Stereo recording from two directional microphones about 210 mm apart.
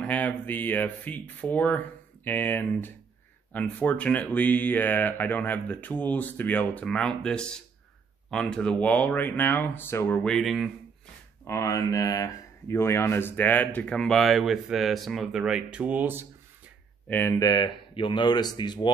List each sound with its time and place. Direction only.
0.0 s speech: 5° left (ahead or behind)
11.4 s speech: 15° left (ahead or behind); by 16.3 s 10° right (ahead or behind)
17.1 s speech: 10° left (ahead or behind)